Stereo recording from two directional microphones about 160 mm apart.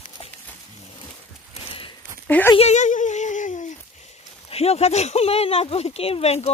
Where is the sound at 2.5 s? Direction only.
45° left (ahead or behind).